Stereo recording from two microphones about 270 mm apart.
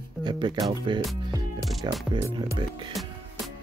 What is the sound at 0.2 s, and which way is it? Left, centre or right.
Speech, centre.